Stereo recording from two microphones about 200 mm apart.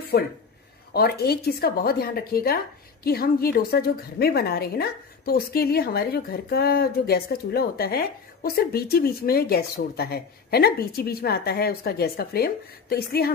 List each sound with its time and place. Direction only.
0.1 s a woman's voice: 50° left (ahead or behind)